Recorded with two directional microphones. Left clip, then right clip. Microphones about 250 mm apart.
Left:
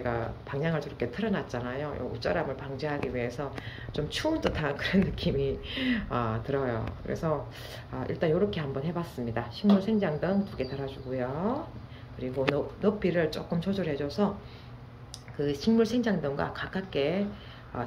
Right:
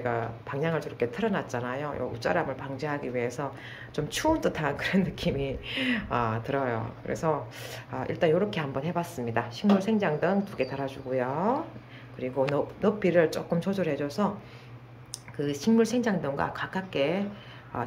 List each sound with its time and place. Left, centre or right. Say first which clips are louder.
0.0 s speech: right 2 dB; centre
15.3 s speech: right 1 dB; centre